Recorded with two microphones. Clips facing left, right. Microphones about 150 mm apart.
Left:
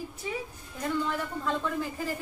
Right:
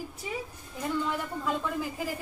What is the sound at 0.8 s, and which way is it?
Speech, 5° right (ahead or behind).